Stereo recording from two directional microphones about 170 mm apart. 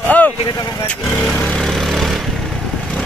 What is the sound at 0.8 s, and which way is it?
Vehicle, 5° left (ahead or behind).